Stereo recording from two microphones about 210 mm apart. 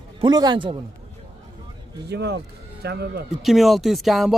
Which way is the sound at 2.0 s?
50° right (ahead or behind).